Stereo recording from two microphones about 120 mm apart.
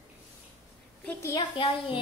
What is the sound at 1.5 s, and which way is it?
Speech, 45° left (ahead or behind).